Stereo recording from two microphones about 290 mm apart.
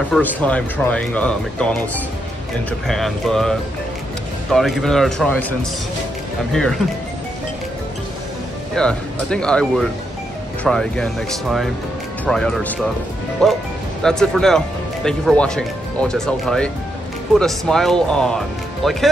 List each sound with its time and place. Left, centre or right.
0.1 s speech: centre
2.9 s speech: centre
8.7 s speech: centre
14.0 s speech: centre